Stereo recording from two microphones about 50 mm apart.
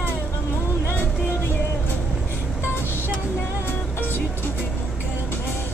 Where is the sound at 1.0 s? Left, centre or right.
Left.